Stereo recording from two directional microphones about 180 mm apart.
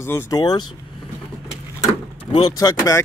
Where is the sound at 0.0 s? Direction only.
15° left (ahead or behind).